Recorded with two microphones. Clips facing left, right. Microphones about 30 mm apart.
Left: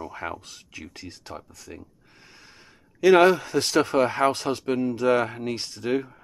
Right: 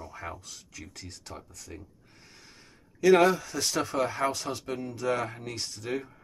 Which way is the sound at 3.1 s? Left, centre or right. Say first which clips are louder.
Left 5 dB; left.